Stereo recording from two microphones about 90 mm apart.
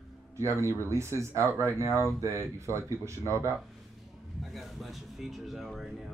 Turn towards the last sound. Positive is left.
turn(degrees=0)  # may be behind; listen again after turning